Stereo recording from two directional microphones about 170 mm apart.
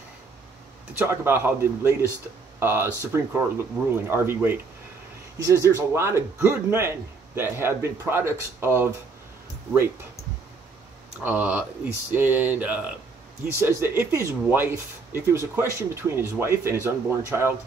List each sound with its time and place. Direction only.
0.9 s a man's voice: 15° right (ahead or behind)
11.2 s a man's voice: 10° right (ahead or behind)